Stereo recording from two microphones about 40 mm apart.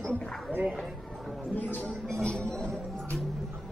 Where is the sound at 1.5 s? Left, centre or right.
Left.